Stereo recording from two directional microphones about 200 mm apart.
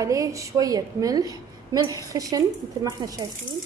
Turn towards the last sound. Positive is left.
turn(degrees=-15)  # may be behind; listen again after turning